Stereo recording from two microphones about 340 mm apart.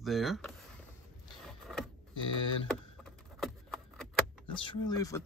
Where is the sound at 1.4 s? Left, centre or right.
Centre.